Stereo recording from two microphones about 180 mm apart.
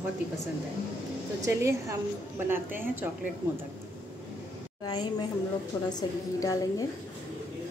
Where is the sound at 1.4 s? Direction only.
15° right (ahead or behind).